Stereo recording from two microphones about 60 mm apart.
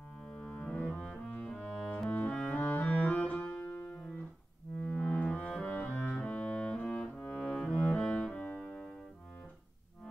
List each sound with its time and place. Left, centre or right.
0.2 s cello: centre
4.7 s music: left
5.8 s cello: left
8.5 s music: centre